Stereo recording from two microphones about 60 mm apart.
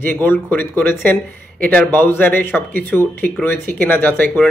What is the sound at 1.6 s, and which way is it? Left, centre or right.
Speech, left.